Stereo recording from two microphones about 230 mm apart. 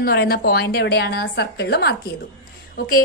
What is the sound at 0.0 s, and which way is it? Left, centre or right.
A woman's voice, left.